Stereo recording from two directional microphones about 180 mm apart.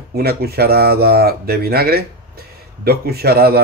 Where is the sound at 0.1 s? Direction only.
60° right (ahead or behind).